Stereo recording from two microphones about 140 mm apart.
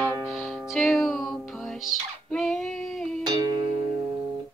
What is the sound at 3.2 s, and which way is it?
Music, 30° right (ahead or behind).